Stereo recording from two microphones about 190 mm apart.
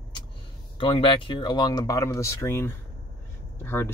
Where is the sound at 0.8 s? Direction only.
25° left (ahead or behind).